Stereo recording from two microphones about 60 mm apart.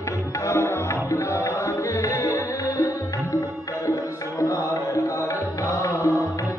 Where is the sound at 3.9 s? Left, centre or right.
Left.